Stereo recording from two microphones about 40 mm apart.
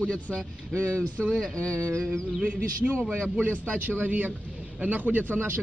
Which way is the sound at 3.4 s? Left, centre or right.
Right.